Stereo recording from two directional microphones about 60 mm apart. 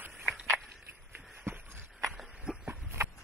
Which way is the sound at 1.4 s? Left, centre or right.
Right.